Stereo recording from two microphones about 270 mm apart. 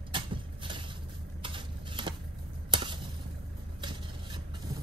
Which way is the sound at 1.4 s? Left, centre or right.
Centre.